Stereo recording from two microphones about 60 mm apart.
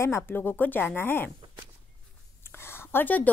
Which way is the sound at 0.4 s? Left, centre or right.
Left.